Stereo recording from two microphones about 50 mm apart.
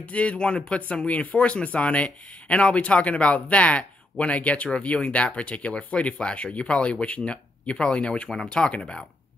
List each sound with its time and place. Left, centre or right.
0.0 s speech: left